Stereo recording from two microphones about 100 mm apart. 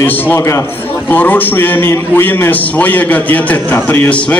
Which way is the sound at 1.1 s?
15° left (ahead or behind).